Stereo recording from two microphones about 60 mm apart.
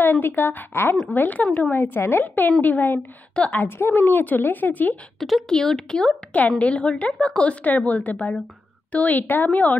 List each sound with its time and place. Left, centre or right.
0.0 s a woman's voice: left
1.7 s a woman's voice: left
5.2 s a woman's voice: centre; by 9.8 s left